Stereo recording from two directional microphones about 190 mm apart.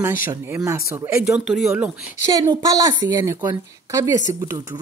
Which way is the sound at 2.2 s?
20° right (ahead or behind).